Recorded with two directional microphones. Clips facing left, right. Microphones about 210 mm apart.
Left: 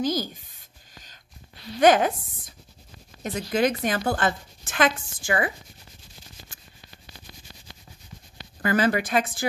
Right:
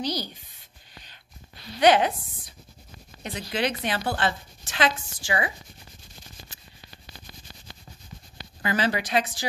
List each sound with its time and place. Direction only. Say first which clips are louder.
0.0 s a woman's voice: left 4 dB; 45° left (ahead or behind)
0.9 s a sound: right 1 dB; 45° left (ahead or behind)
1.8 s a woman's voice: left 1 dB; 45° left (ahead or behind)
8.6 s a woman's voice: left 4 dB; 50° left (ahead or behind)